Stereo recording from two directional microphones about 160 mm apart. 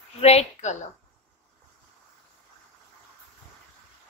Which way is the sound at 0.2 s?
40° left (ahead or behind).